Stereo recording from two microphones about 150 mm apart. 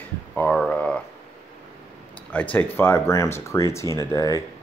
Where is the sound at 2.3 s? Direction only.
10° left (ahead or behind).